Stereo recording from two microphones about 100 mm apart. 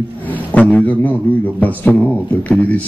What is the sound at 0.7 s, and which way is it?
A man's voice, 15° left (ahead or behind).